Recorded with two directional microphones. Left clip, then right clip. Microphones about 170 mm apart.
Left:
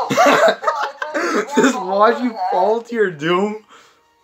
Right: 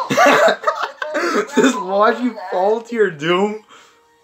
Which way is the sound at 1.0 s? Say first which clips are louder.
Right 1 dB; centre (ahead or behind).